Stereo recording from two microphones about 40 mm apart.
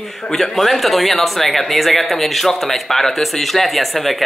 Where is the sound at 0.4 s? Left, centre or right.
Centre.